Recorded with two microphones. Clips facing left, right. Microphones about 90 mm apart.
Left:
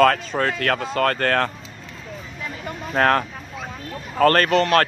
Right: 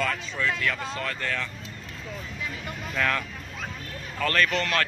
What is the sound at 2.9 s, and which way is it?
Speech, 50° left (ahead or behind).